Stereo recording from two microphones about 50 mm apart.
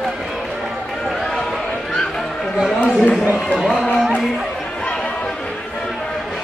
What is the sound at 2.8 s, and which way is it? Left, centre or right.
Speech, left.